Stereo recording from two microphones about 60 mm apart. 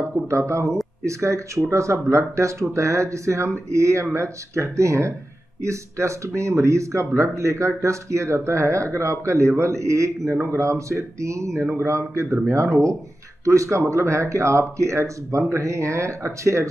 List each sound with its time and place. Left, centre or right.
0.3 s speech: right
10.3 s speech: right
10.6 s speech: right
11.6 s speech: right
13.5 s speech: right